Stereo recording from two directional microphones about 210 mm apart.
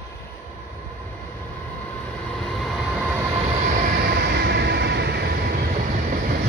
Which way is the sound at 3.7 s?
45° right (ahead or behind).